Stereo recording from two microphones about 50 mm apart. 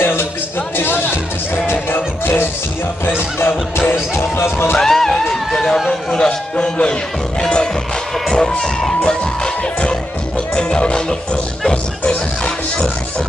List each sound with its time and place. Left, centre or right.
0.0 s music: left
4.7 s music: centre
8.3 s music: centre